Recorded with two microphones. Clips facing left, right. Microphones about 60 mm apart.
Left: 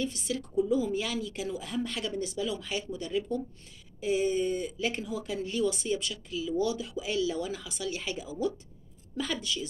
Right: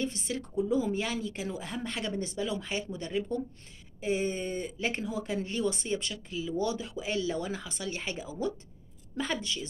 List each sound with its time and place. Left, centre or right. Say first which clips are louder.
0.0 s a woman's voice: left 1 dB; right